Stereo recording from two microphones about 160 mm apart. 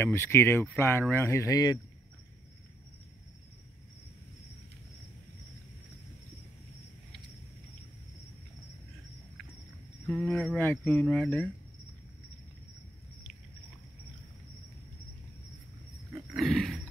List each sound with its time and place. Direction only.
0.0 s speech: 15° left (ahead or behind)
10.0 s speech: centre (ahead or behind)
16.3 s wild animals: centre (ahead or behind)